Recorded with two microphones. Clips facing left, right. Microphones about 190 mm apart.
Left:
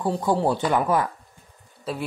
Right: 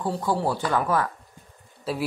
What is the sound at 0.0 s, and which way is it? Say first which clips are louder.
Speech: left 3 dB; 15° left (ahead or behind).